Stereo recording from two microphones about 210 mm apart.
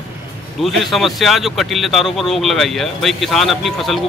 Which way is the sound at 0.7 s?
Centre (ahead or behind).